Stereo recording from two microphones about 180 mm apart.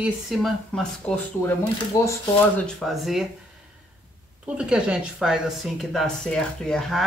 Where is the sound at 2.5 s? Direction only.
Centre (ahead or behind).